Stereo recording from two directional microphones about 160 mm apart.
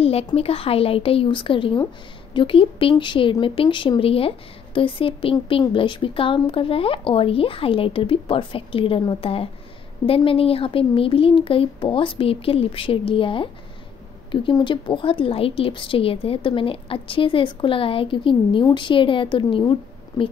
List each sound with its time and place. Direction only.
0.0 s a woman's voice: 40° left (ahead or behind)